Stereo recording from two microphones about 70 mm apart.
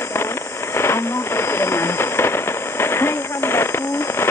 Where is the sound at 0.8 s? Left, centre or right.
Left.